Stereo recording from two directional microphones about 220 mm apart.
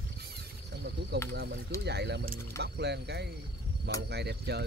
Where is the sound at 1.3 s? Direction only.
50° right (ahead or behind).